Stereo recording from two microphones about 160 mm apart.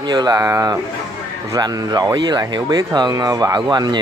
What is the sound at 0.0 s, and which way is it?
Speech, 25° right (ahead or behind).